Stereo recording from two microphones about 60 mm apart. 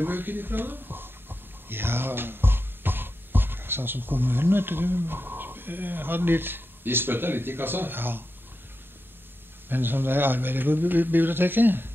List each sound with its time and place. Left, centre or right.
0.0 s speech: right
9.7 s a man's voice: right